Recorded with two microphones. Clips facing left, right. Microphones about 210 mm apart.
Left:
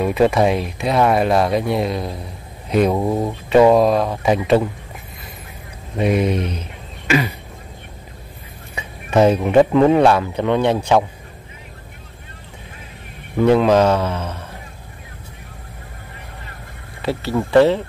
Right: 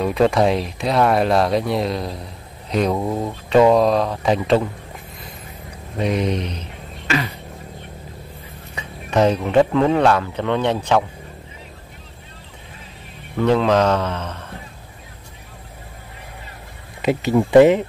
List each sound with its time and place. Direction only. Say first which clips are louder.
0.0 s speech: left 1 dB; 5° left (ahead or behind)
5.9 s speech: left 3 dB; 5° left (ahead or behind)
7.1 s a sound: left 4 dB; 15° left (ahead or behind)
8.7 s speech: left 3 dB; 10° left (ahead or behind)
13.4 s speech: left 3 dB; 10° left (ahead or behind)
17.0 s speech: right 3 dB; 15° right (ahead or behind)